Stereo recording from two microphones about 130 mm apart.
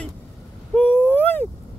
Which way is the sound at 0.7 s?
15° left (ahead or behind).